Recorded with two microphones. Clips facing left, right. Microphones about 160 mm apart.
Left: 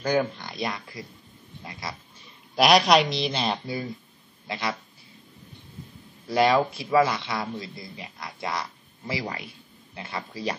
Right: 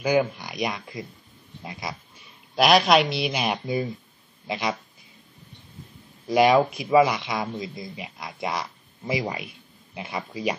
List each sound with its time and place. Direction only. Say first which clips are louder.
0.0 s speech: right 2 dB; 10° right (ahead or behind)
1.6 s pig: right 3 dB; 20° right (ahead or behind)
2.5 s a woman's voice: even; centre (ahead or behind); by 4.7 s 20° right (ahead or behind)
6.2 s speech: right 3 dB; 20° right (ahead or behind)